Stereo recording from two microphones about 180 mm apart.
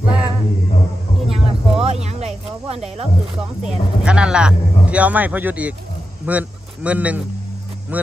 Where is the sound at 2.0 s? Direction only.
35° right (ahead or behind).